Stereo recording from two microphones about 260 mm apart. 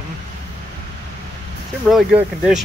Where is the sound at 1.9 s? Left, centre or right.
Centre.